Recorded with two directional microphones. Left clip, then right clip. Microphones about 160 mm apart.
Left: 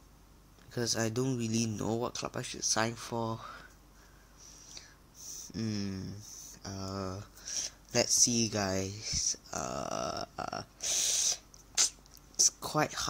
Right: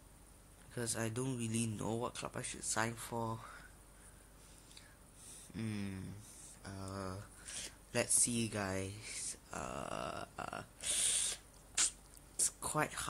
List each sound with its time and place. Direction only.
0.7 s speech: 30° left (ahead or behind)
4.8 s drip: 40° left (ahead or behind)
5.2 s a sound: 25° left (ahead or behind)
6.6 s speech: 25° left (ahead or behind)